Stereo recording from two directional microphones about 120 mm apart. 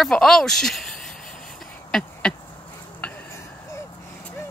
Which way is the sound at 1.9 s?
5° left (ahead or behind).